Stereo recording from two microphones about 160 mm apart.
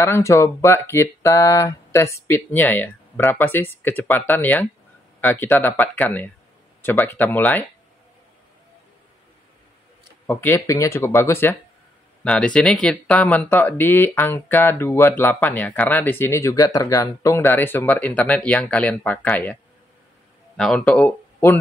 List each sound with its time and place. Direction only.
0.0 s speech: 15° left (ahead or behind)
10.2 s speech: 15° left (ahead or behind)